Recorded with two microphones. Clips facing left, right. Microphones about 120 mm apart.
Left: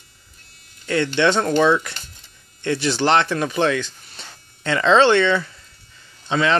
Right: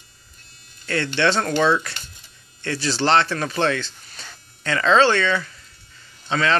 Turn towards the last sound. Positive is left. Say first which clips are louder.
# left 2 dB
turn(degrees=20)  # may be behind; listen again after turning